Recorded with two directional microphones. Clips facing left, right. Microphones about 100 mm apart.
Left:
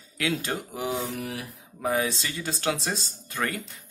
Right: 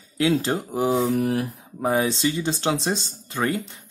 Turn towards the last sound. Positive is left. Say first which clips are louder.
# right 6 dB
turn(degrees=-25)  # may be behind; listen again after turning